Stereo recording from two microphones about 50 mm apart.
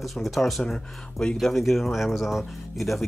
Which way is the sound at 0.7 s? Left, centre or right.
Centre.